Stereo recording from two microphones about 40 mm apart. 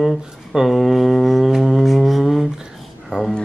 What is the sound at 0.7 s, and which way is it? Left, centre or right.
Mantra, centre.